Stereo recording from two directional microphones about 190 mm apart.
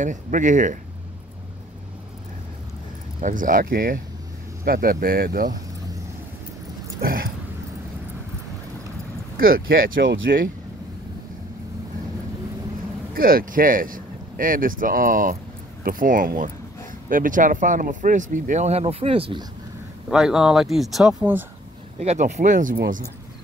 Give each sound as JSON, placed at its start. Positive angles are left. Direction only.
{"t": 0.0, "sound": "speech", "side_deg": -40}
{"t": 3.2, "sound": "speech", "side_deg": -45}
{"t": 7.0, "sound": "a sound", "side_deg": -50}
{"t": 9.4, "sound": "speech", "side_deg": -50}
{"t": 9.9, "sound": "speech", "side_deg": -85}
{"t": 13.1, "sound": "speech", "side_deg": -50}
{"t": 20.1, "sound": "speech", "side_deg": -5}
{"t": 22.0, "sound": "speech", "side_deg": -35}